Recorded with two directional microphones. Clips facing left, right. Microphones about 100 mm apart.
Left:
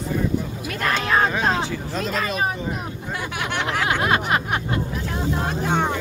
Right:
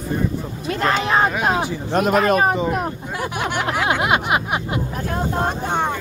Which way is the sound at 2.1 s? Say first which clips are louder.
Right 8 dB; 55° right (ahead or behind).